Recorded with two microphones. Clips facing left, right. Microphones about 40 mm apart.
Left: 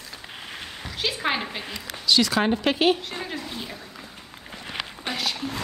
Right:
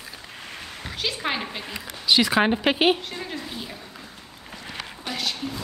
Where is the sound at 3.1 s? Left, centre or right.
Centre.